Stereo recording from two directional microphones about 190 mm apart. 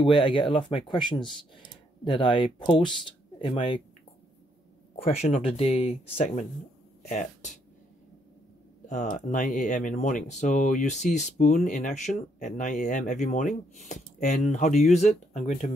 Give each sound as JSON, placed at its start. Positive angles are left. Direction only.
{"t": 0.0, "sound": "speech", "side_deg": 25}
{"t": 4.9, "sound": "speech", "side_deg": 30}
{"t": 8.8, "sound": "speech", "side_deg": 40}